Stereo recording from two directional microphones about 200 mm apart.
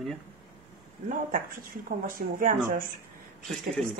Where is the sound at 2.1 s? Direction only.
45° right (ahead or behind).